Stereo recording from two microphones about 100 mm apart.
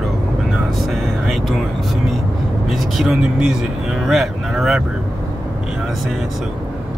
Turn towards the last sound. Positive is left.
turn(degrees=-5)  # may be behind; listen again after turning